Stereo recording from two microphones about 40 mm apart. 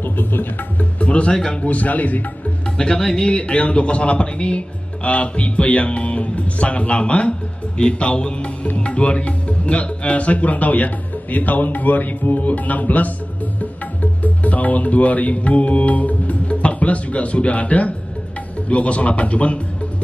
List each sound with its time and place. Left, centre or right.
0.0 s music: left
0.9 s music: left
1.3 s speech: left
1.6 s speech: left
2.8 s speech: centre
3.3 s speech: left
14.2 s speech: left